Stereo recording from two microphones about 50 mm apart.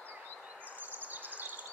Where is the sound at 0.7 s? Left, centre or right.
Right.